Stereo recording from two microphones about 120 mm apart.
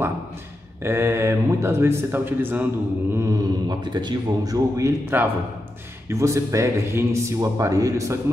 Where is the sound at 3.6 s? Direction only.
35° right (ahead or behind).